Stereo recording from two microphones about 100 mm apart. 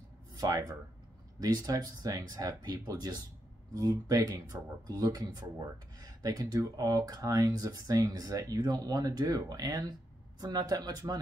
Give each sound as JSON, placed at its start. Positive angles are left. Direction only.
{"t": 0.4, "sound": "speech", "side_deg": -35}